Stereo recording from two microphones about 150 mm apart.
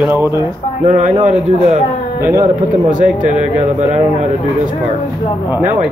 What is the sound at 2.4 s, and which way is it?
Speech, 60° right (ahead or behind).